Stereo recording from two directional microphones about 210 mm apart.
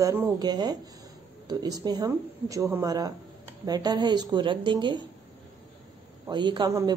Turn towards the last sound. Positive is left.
turn(degrees=-20)  # may be behind; listen again after turning